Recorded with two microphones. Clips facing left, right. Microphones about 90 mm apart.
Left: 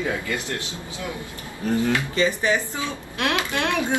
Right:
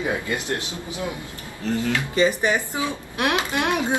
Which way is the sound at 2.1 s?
20° right (ahead or behind).